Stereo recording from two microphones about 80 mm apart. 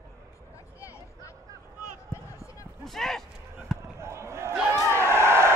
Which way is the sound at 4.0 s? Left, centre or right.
Right.